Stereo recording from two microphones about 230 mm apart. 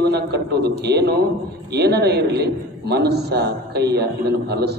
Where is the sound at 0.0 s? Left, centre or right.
Right.